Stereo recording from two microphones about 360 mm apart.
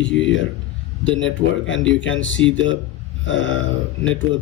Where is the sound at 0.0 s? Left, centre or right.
Left.